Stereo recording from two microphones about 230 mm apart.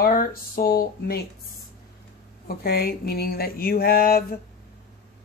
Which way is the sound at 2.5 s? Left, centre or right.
Left.